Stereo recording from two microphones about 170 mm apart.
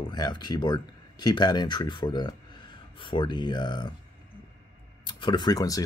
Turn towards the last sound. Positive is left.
turn(degrees=20)  # may be behind; listen again after turning